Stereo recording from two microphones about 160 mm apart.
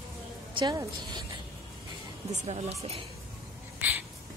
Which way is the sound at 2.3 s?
45° right (ahead or behind).